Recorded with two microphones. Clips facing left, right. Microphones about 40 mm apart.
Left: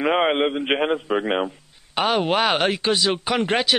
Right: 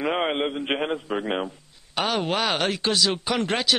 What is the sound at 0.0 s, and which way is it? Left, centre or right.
A man's voice, left.